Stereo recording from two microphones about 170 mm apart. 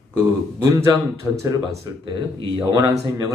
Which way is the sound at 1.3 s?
20° right (ahead or behind).